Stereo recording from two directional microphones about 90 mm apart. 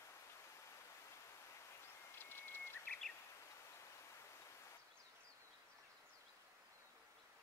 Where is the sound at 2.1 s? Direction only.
25° left (ahead or behind).